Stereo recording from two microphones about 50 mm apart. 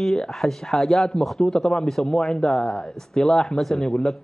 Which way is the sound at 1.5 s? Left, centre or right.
Centre.